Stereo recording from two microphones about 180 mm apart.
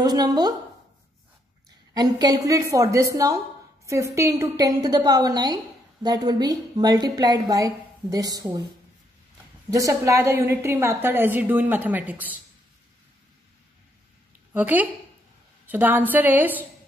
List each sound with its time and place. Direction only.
0.0 s a woman's voice: 20° right (ahead or behind)
2.0 s a woman's voice: 20° right (ahead or behind)
9.7 s a woman's voice: 20° right (ahead or behind)
14.5 s a woman's voice: 10° right (ahead or behind)